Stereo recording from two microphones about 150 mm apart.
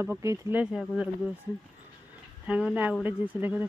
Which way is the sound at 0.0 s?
20° right (ahead or behind).